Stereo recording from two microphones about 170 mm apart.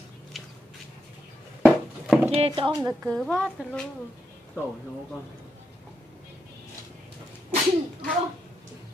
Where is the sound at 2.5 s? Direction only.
30° right (ahead or behind).